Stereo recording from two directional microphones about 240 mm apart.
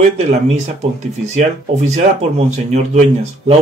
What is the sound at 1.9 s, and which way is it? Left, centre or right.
Speech, right.